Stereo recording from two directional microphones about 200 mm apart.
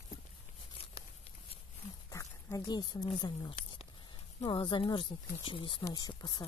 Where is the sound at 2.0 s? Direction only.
15° left (ahead or behind).